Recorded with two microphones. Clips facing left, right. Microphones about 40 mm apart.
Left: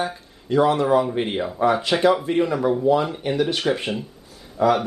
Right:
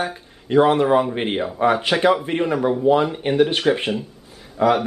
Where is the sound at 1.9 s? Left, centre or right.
Centre.